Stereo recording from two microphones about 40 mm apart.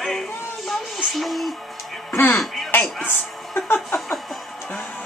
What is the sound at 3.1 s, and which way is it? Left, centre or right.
Speech, left.